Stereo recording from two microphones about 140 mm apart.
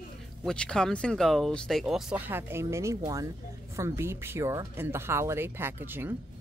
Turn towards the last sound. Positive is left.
turn(degrees=-15)  # may be behind; listen again after turning